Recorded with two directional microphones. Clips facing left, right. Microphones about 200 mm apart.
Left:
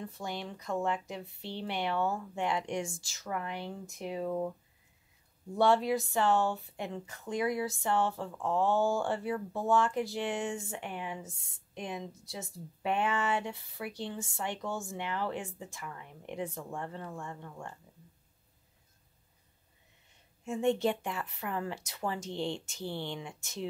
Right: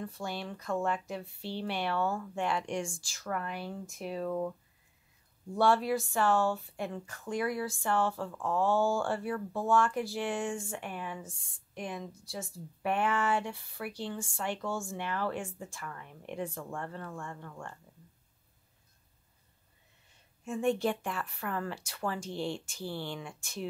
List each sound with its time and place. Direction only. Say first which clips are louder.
0.0 s speech: right 1 dB; 20° left (ahead or behind)
5.6 s speech: left 1 dB; 20° left (ahead or behind)
20.4 s speech: left 1 dB; 20° left (ahead or behind)